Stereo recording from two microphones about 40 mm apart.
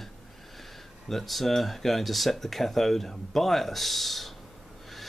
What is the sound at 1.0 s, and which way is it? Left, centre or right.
Speech, centre.